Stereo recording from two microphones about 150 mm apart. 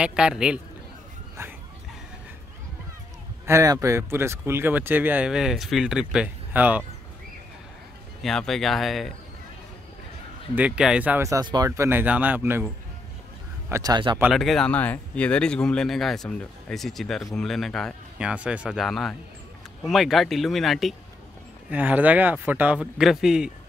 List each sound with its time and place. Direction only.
0.0 s speech: 5° right (ahead or behind)
1.4 s speech: 15° right (ahead or behind)
3.4 s speech: 20° right (ahead or behind)
8.2 s speech: centre (ahead or behind)
10.5 s speech: 5° right (ahead or behind)
11.2 s speech: 25° right (ahead or behind)
13.7 s speech: 20° right (ahead or behind)
14.3 s speech: centre (ahead or behind)
18.2 s speech: 10° right (ahead or behind)
21.6 s speech: 10° right (ahead or behind)